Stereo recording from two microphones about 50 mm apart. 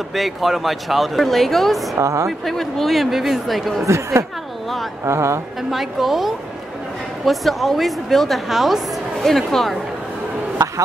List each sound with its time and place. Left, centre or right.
0.1 s a woman's voice: centre
2.0 s a woman's voice: right
2.2 s a woman's voice: centre
3.8 s speech: right
5.6 s a woman's voice: centre